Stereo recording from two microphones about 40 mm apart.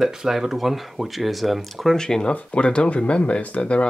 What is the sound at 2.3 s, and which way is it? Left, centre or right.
Speech, left.